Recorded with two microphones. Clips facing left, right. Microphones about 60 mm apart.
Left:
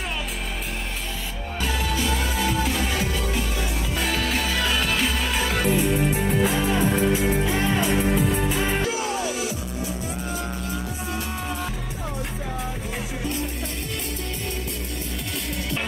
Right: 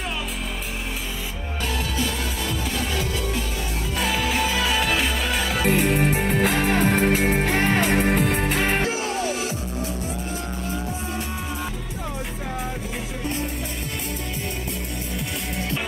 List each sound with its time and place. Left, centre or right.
4.0 s music: centre
5.7 s music: right
8.9 s music: right